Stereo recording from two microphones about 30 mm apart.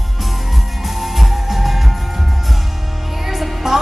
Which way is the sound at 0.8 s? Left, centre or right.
Centre.